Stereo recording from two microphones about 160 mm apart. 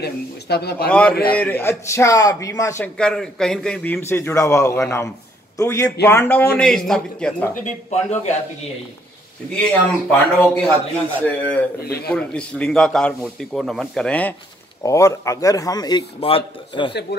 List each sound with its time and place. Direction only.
0.0 s speech: 90° left
0.8 s a man's voice: 10° left (ahead or behind)
3.0 s a man's voice: 5° left (ahead or behind)
7.6 s speech: 45° left (ahead or behind)
9.6 s a man's voice: 5° left (ahead or behind)
11.8 s speech: 75° left (ahead or behind)
12.1 s a man's voice: 5° left (ahead or behind)
14.8 s a man's voice: 20° left (ahead or behind)
16.2 s speech: 35° left (ahead or behind)